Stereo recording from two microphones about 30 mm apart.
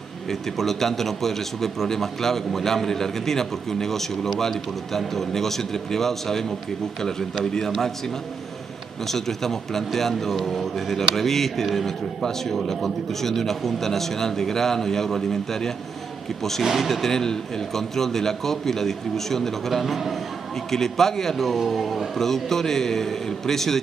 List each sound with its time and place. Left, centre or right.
0.3 s speech: centre
9.0 s speech: centre
16.6 s speech: centre
16.9 s speech: centre
19.7 s speech: centre
20.7 s speech: centre
21.6 s speech: centre